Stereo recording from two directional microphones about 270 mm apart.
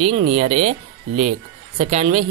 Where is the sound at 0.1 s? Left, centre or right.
Right.